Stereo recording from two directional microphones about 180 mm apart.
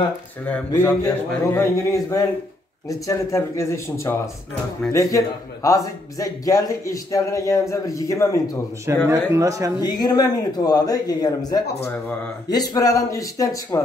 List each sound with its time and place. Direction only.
0.7 s a man's voice: 15° left (ahead or behind)
8.8 s speech: 15° right (ahead or behind)
9.8 s speech: 20° left (ahead or behind)